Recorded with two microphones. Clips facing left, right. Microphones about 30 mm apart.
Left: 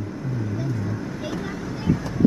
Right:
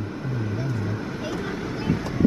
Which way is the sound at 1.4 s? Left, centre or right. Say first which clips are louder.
Left 3 dB; right.